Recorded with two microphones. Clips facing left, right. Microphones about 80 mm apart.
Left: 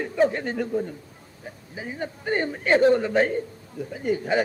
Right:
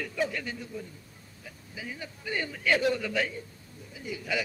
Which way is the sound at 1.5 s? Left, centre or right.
Left.